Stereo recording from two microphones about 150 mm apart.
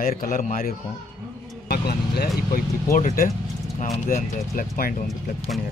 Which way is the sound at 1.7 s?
90° left.